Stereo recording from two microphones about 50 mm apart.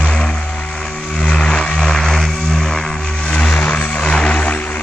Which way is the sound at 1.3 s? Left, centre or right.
Centre.